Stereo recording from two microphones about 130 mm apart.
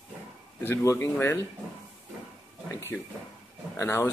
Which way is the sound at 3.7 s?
20° left (ahead or behind).